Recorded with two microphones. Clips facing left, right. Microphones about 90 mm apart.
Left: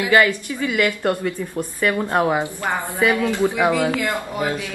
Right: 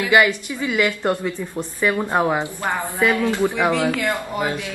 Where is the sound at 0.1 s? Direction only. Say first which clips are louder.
Even; 20° right (ahead or behind).